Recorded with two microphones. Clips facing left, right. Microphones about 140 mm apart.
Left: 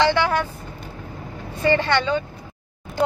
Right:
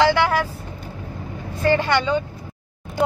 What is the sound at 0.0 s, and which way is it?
Vehicle, 5° right (ahead or behind).